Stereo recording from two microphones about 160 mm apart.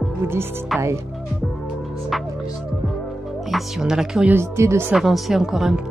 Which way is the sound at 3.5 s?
Centre (ahead or behind).